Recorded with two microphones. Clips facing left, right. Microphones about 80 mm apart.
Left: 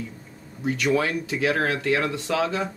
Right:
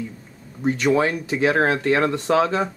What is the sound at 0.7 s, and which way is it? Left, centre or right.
Speech, right.